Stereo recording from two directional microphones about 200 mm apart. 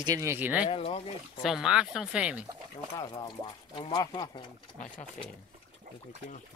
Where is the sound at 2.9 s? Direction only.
20° left (ahead or behind).